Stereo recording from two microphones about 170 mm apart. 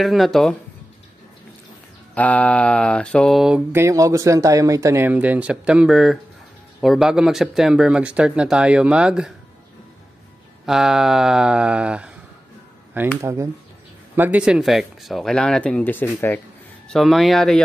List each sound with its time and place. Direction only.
0.0 s speech: centre (ahead or behind)
2.1 s speech: 10° left (ahead or behind)
3.8 s speech: 20° right (ahead or behind)
10.6 s speech: 5° right (ahead or behind)
13.2 s speech: 20° right (ahead or behind); by 16.3 s 10° left (ahead or behind)
16.9 s speech: centre (ahead or behind)